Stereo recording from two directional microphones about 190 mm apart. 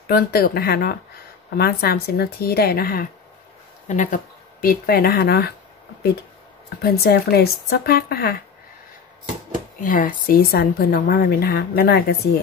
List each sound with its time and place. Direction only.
0.0 s a woman's voice: 55° left (ahead or behind)
3.8 s speech: 40° left (ahead or behind)
6.8 s a woman's voice: 55° left (ahead or behind)
9.8 s a woman's voice: 45° left (ahead or behind)